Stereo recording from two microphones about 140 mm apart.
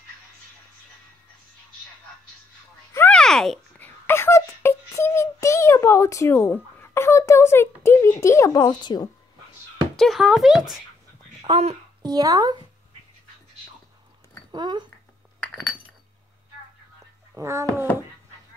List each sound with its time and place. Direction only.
2.9 s a sound: 10° left (ahead or behind); by 9.1 s 30° left (ahead or behind)
9.9 s speech: centre (ahead or behind)
11.4 s speech: 45° right (ahead or behind)
12.0 s speech: 25° right (ahead or behind)
14.5 s speech: 35° right (ahead or behind)
17.4 s speech: 20° right (ahead or behind)